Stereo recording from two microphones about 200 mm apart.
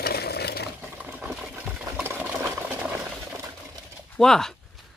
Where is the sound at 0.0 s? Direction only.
50° left (ahead or behind).